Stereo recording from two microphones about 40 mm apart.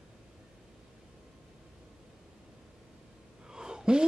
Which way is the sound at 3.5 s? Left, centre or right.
Centre.